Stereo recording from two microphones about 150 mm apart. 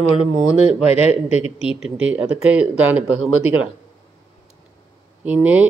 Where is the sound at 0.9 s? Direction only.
45° left (ahead or behind).